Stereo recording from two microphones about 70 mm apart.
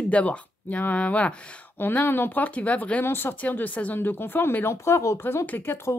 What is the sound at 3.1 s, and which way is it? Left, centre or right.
Speech, left.